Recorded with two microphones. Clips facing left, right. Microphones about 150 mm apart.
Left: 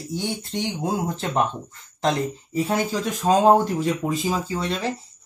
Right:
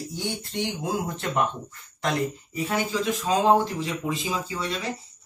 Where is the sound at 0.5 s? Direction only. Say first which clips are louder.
Left 2 dB; 35° left (ahead or behind).